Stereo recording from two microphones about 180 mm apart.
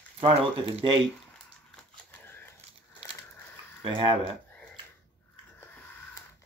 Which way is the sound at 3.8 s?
25° right (ahead or behind).